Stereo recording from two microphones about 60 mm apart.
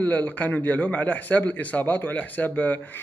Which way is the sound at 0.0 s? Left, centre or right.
Left.